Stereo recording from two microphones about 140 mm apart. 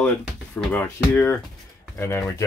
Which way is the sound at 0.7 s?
15° left (ahead or behind).